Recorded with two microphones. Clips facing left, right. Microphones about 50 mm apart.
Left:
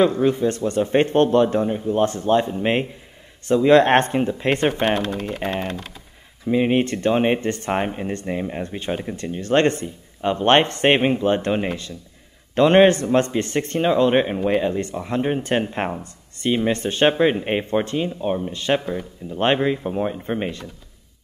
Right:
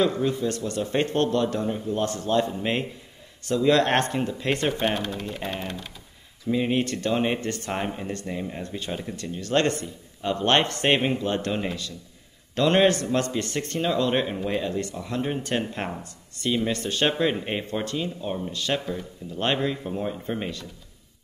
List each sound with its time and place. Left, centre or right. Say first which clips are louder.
0.0 s a man's voice: left 6 dB; left
4.8 s speech: left 5 dB; left
5.4 s speech: left 8 dB; left
5.7 s speech: left 5 dB; left
6.4 s a man's voice: left 5 dB; left